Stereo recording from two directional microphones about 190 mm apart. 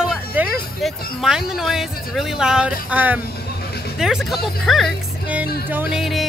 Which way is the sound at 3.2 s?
55° left (ahead or behind).